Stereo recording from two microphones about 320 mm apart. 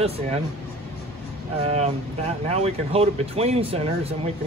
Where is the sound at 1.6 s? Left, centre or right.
Centre.